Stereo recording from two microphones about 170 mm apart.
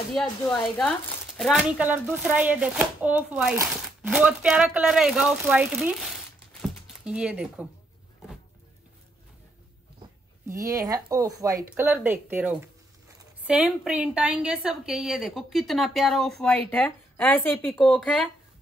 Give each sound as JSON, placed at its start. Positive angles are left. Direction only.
{"t": 0.1, "sound": "a woman's voice", "side_deg": 0}
{"t": 3.6, "sound": "crumpling", "side_deg": 0}
{"t": 4.0, "sound": "a woman's voice", "side_deg": -10}
{"t": 6.6, "sound": "a sound", "side_deg": -5}
{"t": 10.5, "sound": "a woman's voice", "side_deg": -20}